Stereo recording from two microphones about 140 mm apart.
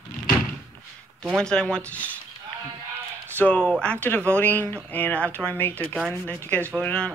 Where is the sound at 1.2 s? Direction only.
5° left (ahead or behind).